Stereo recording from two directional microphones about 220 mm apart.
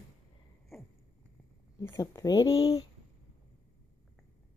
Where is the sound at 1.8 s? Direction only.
15° left (ahead or behind).